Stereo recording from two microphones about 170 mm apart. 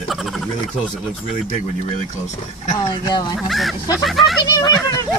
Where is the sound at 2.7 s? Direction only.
25° left (ahead or behind).